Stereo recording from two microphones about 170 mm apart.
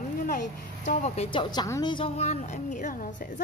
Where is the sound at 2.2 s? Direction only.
45° left (ahead or behind).